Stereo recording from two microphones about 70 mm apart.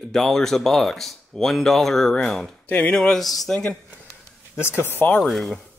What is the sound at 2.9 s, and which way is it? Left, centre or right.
Speech, centre.